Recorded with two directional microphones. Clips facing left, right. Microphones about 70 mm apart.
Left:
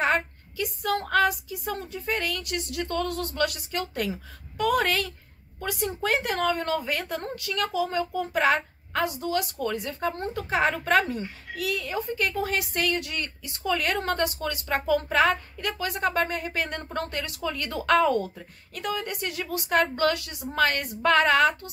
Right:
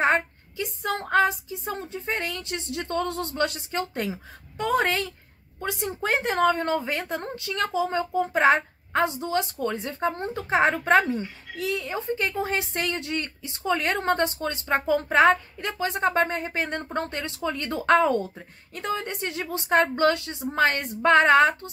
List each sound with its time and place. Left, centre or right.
0.0 s a woman's voice: right